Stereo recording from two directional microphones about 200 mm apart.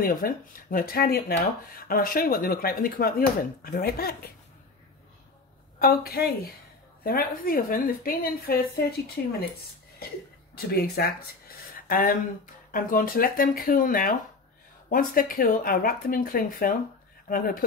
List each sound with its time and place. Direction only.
0.0 s speech: 45° left (ahead or behind)
5.8 s speech: 50° left (ahead or behind)
10.5 s speech: 50° left (ahead or behind)